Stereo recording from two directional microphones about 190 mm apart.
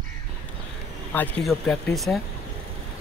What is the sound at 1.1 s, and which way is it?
Speech, 5° left (ahead or behind).